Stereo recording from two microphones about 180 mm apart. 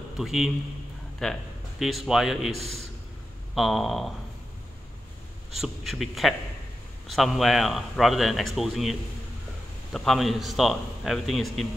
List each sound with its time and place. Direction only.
0.2 s a man's voice: centre (ahead or behind)
2.5 s a man's voice: 35° right (ahead or behind)
3.5 s a man's voice: centre (ahead or behind)
5.6 s a man's voice: centre (ahead or behind)
9.9 s a man's voice: centre (ahead or behind)